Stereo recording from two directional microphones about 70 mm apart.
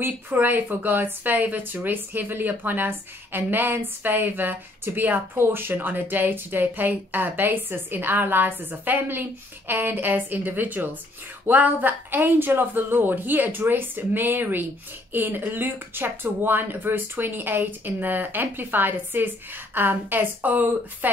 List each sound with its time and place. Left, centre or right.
0.0 s speech: right